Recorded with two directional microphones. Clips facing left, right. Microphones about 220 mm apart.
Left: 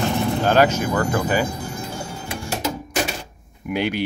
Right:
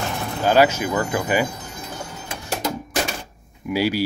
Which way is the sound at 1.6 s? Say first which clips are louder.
Left 4 dB; 10° left (ahead or behind).